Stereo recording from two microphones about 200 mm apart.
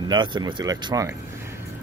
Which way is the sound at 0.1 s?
20° right (ahead or behind).